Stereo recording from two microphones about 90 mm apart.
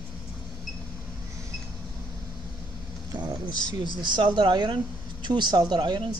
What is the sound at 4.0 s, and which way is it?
Speech, 60° right (ahead or behind).